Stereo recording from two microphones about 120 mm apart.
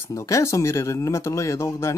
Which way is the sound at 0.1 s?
25° left (ahead or behind).